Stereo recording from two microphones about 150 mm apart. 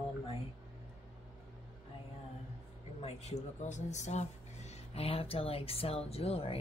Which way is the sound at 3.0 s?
45° left (ahead or behind).